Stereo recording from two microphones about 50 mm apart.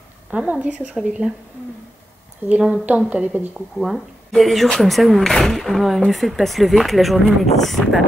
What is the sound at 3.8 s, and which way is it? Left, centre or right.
Speech, centre.